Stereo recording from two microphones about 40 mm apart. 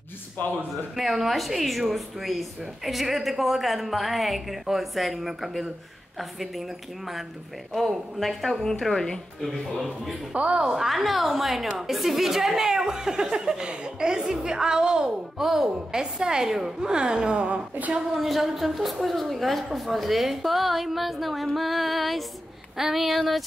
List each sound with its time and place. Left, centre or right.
0.9 s a woman's voice: centre
7.7 s a woman's voice: centre
10.3 s a woman's voice: right
10.6 s a woman's voice: centre; by 17.6 s right
18.1 s a woman's voice: centre